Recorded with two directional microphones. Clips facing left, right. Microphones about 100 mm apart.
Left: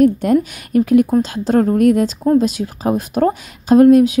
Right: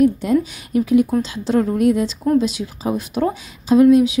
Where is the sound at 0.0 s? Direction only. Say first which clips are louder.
Left 3 dB; 55° left (ahead or behind).